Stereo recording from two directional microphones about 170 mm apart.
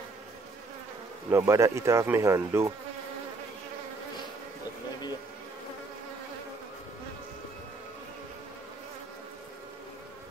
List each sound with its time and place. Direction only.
1.3 s speech: 15° right (ahead or behind)